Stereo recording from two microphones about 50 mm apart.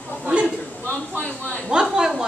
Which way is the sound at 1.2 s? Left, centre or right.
Left.